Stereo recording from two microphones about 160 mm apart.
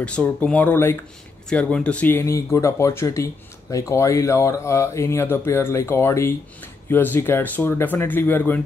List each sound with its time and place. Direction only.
0.0 s speech: 10° left (ahead or behind)